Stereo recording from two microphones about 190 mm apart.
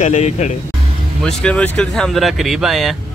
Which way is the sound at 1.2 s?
5° left (ahead or behind).